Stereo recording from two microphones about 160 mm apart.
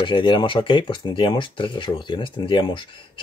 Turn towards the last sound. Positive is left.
turn(degrees=30)  # may be behind; listen again after turning